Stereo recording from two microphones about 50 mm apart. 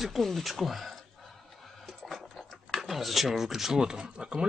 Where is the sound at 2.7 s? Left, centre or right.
Centre.